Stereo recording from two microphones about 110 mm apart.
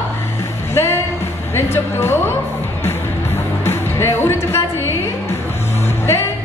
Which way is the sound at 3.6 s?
20° left (ahead or behind).